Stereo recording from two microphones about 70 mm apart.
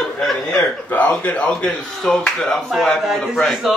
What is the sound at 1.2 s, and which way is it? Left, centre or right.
A man's voice, centre.